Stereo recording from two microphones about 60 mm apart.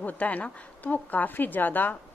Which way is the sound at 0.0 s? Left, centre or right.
Left.